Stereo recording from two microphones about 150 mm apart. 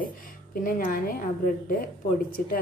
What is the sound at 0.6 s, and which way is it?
A woman's voice, 70° left (ahead or behind).